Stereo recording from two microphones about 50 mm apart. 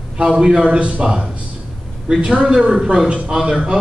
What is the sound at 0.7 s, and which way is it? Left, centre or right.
Speech, right.